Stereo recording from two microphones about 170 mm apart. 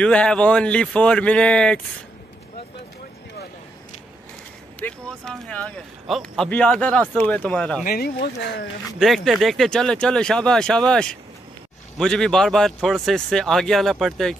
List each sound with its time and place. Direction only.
0.0 s speech: 5° left (ahead or behind)
4.7 s speech: 5° left (ahead or behind)
7.8 s speech: 60° left (ahead or behind)
9.0 s speech: centre (ahead or behind)